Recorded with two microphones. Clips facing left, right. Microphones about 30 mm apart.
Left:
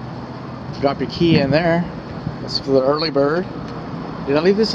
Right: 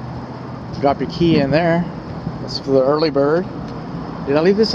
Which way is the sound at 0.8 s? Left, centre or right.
Centre.